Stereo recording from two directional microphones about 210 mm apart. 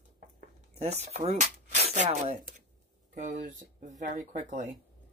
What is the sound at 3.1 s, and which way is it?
A woman's voice, 35° right (ahead or behind).